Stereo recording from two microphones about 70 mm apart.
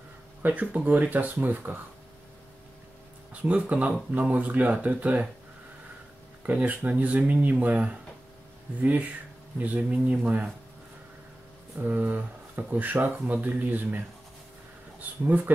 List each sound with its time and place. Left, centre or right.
0.4 s speech: right
3.4 s speech: centre
6.4 s speech: right
9.6 s speech: right
11.8 s speech: right